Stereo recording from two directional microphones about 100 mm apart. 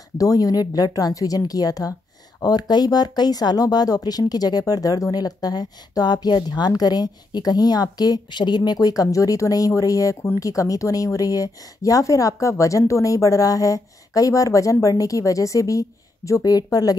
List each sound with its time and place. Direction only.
0.2 s a woman's voice: 40° left (ahead or behind)